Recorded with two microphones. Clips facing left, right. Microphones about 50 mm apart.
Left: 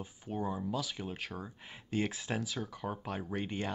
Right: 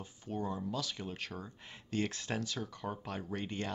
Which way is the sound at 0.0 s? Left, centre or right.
Centre.